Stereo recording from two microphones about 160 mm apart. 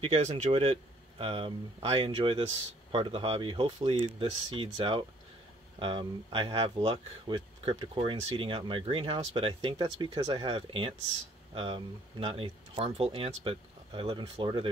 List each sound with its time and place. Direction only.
0.0 s speech: 40° right (ahead or behind)